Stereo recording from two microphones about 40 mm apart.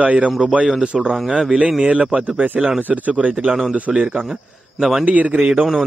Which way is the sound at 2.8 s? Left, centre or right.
Right.